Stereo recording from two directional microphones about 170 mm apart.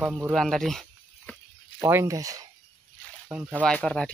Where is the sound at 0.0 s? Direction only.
5° right (ahead or behind).